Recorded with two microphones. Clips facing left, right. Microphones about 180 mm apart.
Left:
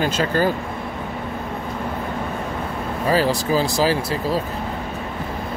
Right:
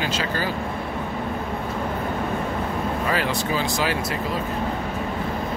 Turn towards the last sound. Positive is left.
turn(degrees=35)  # may be behind; listen again after turning